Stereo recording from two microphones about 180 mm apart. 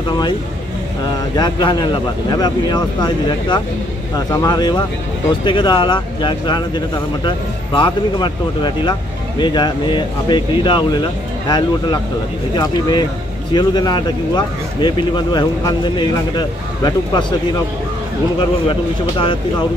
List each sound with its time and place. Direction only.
1.3 s speech: 25° left (ahead or behind)
13.5 s speech: 25° left (ahead or behind)
18.7 s speech: 30° left (ahead or behind)